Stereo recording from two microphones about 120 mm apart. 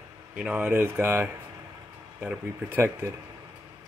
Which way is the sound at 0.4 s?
10° right (ahead or behind).